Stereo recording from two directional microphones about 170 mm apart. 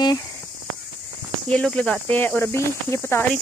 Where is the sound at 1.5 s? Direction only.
5° left (ahead or behind).